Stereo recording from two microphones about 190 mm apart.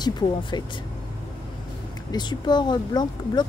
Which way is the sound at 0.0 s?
25° left (ahead or behind).